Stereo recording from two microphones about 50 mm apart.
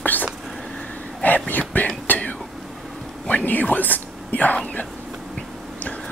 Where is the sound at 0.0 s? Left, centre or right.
Left.